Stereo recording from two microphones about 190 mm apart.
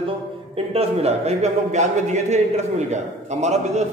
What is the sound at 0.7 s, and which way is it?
A man's voice, 35° right (ahead or behind).